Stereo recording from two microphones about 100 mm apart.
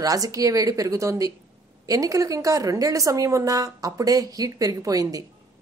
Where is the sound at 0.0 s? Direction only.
35° right (ahead or behind).